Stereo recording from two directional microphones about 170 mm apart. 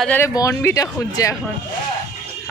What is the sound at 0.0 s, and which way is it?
Speech, 10° left (ahead or behind).